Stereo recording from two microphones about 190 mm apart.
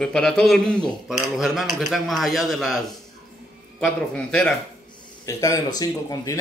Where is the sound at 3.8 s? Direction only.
5° left (ahead or behind).